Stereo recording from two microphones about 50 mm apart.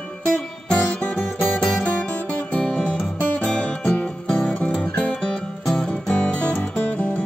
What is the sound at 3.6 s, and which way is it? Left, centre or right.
Music, left.